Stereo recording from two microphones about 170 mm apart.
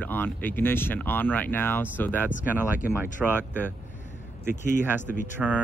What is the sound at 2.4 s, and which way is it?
Speech, 10° right (ahead or behind).